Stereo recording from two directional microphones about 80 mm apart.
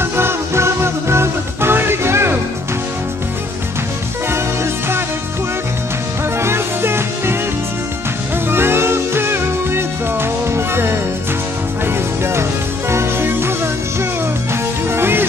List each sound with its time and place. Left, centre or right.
0.0 s music: right
6.4 s music: right
8.5 s music: right
12.9 s music: right
14.9 s music: right